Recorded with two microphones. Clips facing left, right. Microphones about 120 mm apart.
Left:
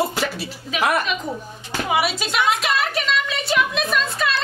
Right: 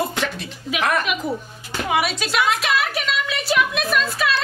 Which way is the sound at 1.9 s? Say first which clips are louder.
Even; centre (ahead or behind).